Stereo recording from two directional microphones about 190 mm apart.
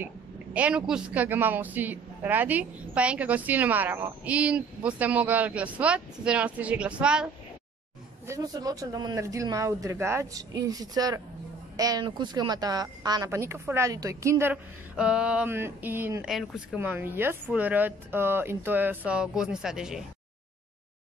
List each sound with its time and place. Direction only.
0.0 s speech: 5° right (ahead or behind)
8.3 s speech: 20° right (ahead or behind); by 20.1 s 5° right (ahead or behind)